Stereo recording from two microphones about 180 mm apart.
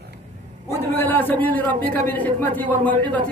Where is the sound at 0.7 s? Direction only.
10° left (ahead or behind).